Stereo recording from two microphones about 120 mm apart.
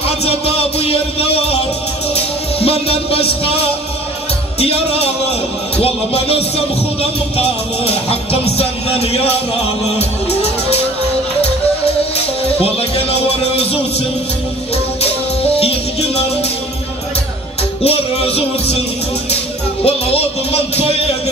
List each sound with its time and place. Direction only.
0.0 s music: 55° left (ahead or behind)
12.2 s music: 55° left (ahead or behind)
15.0 s music: 55° left (ahead or behind)
17.8 s music: 55° left (ahead or behind)
19.8 s music: 55° left (ahead or behind)